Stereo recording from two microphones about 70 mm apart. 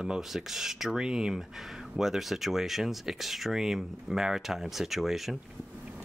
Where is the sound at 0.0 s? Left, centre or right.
Centre.